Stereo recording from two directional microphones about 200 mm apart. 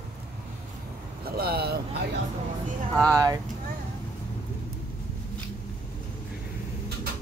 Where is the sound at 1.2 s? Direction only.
50° right (ahead or behind).